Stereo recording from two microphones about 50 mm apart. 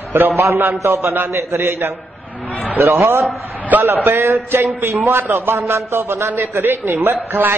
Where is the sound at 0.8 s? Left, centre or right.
Right.